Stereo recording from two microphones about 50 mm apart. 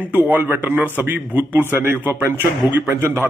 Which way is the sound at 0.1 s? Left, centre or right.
Right.